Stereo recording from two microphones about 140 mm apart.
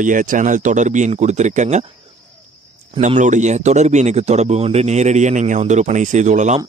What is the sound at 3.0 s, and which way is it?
A man's voice, 60° right (ahead or behind).